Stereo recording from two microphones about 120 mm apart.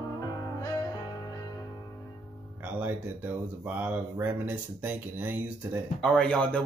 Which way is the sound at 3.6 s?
15° right (ahead or behind).